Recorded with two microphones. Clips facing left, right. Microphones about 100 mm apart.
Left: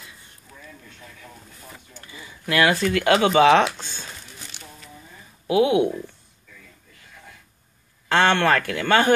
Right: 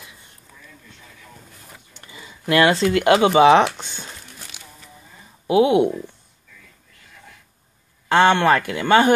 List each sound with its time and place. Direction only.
2.0 s speech: 20° right (ahead or behind)
3.7 s a sound: 20° right (ahead or behind)
5.5 s speech: 25° right (ahead or behind)
8.1 s speech: 15° right (ahead or behind)